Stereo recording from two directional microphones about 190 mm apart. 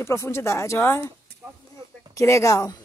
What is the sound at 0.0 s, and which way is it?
Speech, 15° left (ahead or behind).